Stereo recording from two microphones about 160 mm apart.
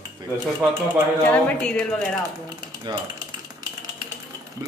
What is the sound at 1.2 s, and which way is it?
Speech, 5° left (ahead or behind).